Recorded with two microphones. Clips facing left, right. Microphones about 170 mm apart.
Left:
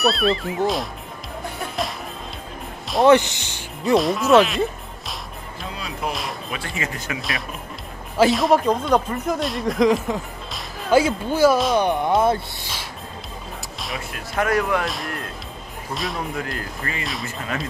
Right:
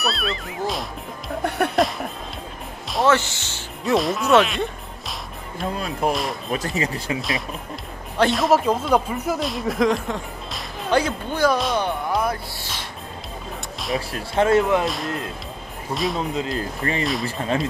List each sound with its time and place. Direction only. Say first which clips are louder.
0.0 s speech: left 7 dB; centre (ahead or behind)
3.1 s speech: left 6 dB; 15° left (ahead or behind)
3.8 s speech: left 2 dB; centre (ahead or behind)
5.8 s speech: right 4 dB; 45° right (ahead or behind)
7.2 s speech: right 2 dB; centre (ahead or behind)
11.8 s speech: left 5 dB; 20° left (ahead or behind)
13.9 s speech: right 4 dB; 30° right (ahead or behind)
15.9 s speech: right 4 dB; centre (ahead or behind)
16.3 s speech: right 4 dB; 25° right (ahead or behind)
17.0 s speech: right 6 dB; centre (ahead or behind)